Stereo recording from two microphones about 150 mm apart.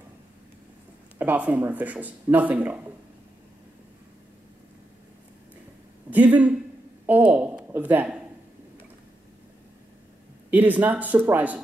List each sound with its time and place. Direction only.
1.1 s speech: 10° right (ahead or behind)
6.0 s a woman's voice: 10° right (ahead or behind)
10.5 s speech: 10° right (ahead or behind)